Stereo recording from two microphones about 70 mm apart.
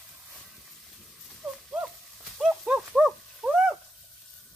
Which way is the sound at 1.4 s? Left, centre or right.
Centre.